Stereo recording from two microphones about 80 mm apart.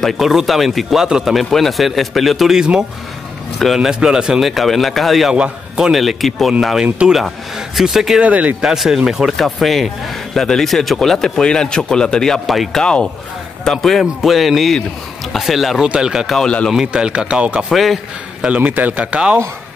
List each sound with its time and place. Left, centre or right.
0.0 s speech: centre
5.3 s a man's voice: centre
5.9 s speech: centre
8.2 s a man's voice: centre
8.6 s a man's voice: centre
16.3 s speech: centre
16.7 s a man's voice: centre
17.6 s speech: centre
18.6 s a man's voice: right